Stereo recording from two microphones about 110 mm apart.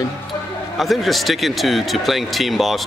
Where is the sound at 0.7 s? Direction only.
Centre (ahead or behind).